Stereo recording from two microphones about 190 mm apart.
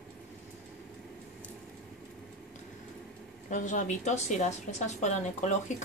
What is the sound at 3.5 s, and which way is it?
A woman's voice, 40° left (ahead or behind).